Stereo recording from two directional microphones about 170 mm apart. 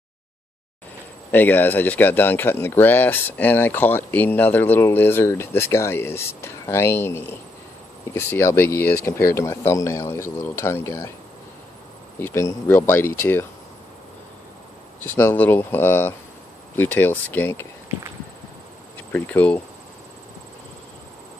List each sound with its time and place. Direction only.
1.3 s speech: 10° left (ahead or behind)
12.2 s speech: 15° left (ahead or behind)
15.0 s speech: 10° left (ahead or behind)
19.1 s speech: 10° left (ahead or behind)